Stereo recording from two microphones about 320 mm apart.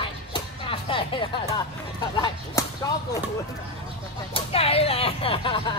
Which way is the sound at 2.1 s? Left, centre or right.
Centre.